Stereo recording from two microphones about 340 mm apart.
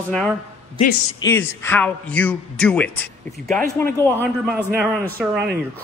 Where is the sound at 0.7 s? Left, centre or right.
Centre.